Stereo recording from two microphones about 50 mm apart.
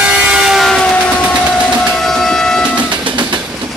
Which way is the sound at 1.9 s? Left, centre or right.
Centre.